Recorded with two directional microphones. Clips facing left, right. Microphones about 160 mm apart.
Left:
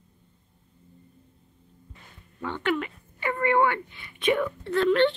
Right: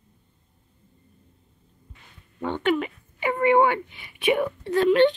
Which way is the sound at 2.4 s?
20° right (ahead or behind).